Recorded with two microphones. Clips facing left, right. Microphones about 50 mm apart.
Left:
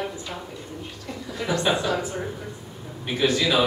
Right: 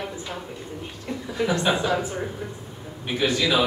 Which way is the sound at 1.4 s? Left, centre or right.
Right.